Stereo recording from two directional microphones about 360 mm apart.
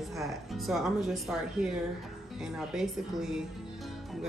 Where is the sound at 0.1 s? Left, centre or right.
Centre.